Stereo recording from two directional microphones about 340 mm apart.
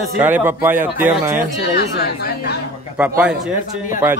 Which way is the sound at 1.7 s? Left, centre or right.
Left.